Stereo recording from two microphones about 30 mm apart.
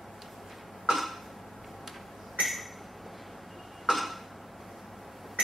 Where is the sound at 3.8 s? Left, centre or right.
Centre.